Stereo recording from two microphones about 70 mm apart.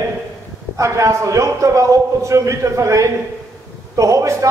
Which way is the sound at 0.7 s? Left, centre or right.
Right.